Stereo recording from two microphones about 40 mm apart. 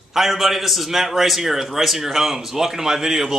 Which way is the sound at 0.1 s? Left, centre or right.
Centre.